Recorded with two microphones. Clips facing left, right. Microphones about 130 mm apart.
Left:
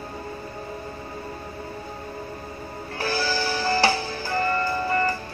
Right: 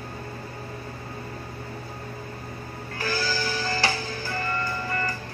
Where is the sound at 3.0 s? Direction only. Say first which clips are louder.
Left 3 dB; 30° left (ahead or behind).